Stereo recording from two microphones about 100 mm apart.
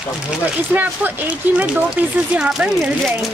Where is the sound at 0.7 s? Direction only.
15° right (ahead or behind).